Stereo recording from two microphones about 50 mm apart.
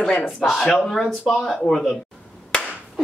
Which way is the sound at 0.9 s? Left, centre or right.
Centre.